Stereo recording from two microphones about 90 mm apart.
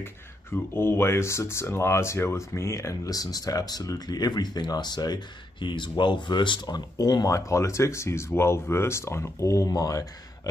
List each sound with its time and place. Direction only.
0.0 s speech: 25° left (ahead or behind); by 7.2 s 50° left (ahead or behind)
7.2 s speech: 35° left (ahead or behind)